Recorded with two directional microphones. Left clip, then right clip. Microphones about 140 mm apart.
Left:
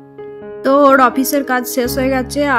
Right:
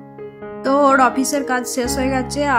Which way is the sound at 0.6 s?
25° left (ahead or behind).